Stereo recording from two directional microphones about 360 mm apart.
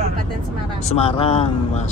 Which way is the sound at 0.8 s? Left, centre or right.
Centre.